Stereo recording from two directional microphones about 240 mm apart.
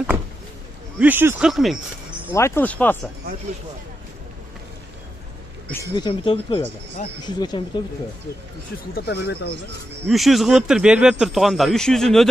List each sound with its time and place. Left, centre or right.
0.9 s speech: centre
2.3 s speech: centre
5.7 s speech: centre
8.9 s speech: left
10.0 s speech: centre